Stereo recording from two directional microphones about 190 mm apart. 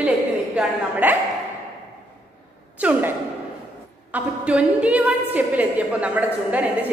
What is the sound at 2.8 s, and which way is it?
Sigh, 10° right (ahead or behind).